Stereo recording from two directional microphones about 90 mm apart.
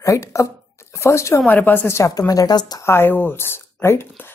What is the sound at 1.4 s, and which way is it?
A woman's voice, 20° left (ahead or behind).